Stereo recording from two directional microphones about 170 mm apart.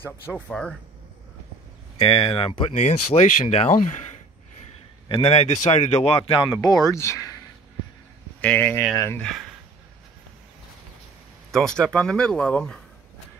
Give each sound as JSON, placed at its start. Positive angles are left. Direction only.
{"t": 0.0, "sound": "speech", "side_deg": 5}
{"t": 2.0, "sound": "speech", "side_deg": 35}
{"t": 5.0, "sound": "speech", "side_deg": 35}
{"t": 8.4, "sound": "speech", "side_deg": 10}
{"t": 11.5, "sound": "speech", "side_deg": 5}